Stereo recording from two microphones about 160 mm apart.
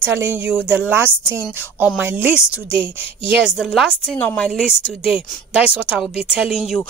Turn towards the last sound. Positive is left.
turn(degrees=-5)  # may be behind; listen again after turning